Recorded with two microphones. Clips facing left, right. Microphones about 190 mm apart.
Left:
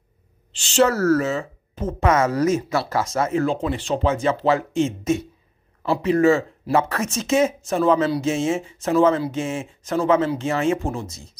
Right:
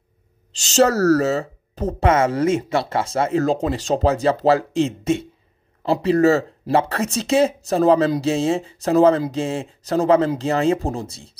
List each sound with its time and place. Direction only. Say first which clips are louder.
0.6 s speech: right 2 dB; 40° right (ahead or behind)